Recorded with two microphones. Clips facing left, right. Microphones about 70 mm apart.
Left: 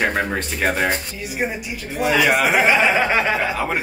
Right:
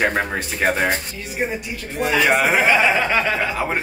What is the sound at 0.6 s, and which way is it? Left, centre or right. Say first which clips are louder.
Speech: right 2 dB; centre.